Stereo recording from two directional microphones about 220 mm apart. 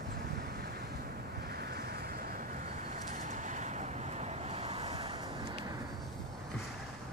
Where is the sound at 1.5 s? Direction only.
45° right (ahead or behind); by 5.7 s 20° right (ahead or behind).